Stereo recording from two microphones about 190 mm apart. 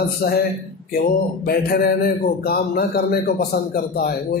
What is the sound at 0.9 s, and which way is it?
A man's voice, 55° left (ahead or behind).